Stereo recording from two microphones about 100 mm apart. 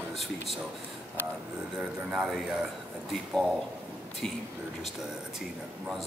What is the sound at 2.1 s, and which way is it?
Speech, 5° right (ahead or behind).